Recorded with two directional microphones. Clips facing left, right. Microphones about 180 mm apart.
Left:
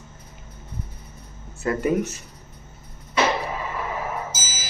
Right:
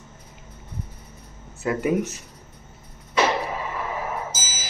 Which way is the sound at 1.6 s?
5° right (ahead or behind).